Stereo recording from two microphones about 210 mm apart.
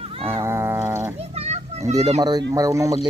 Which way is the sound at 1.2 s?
30° right (ahead or behind).